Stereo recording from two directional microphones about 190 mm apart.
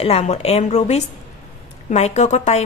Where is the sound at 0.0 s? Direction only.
35° left (ahead or behind).